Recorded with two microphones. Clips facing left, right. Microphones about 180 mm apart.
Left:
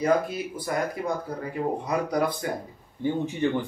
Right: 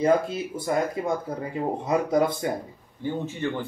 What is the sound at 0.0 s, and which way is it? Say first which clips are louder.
Speech: right 2 dB; 25° right (ahead or behind).